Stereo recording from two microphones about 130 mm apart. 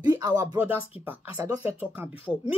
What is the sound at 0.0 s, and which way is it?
Speech, 30° right (ahead or behind).